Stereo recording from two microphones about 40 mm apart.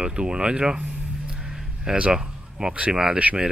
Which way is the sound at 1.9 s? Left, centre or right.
Right.